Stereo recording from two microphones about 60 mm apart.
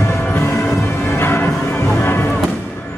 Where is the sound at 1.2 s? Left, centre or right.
Left.